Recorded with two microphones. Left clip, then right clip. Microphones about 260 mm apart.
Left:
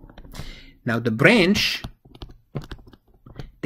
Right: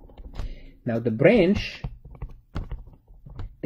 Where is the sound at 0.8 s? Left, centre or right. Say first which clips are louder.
Left 2 dB; centre.